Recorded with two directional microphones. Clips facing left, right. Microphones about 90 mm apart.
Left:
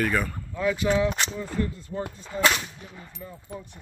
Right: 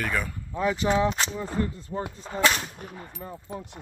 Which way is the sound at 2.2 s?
45° right (ahead or behind).